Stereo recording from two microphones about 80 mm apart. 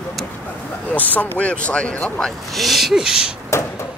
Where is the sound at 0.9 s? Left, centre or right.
Centre.